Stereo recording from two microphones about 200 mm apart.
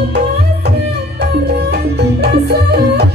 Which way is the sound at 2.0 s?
55° right (ahead or behind).